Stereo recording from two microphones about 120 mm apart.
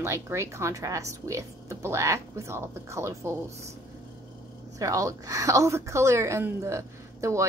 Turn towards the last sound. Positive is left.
turn(degrees=-25)  # may be behind; listen again after turning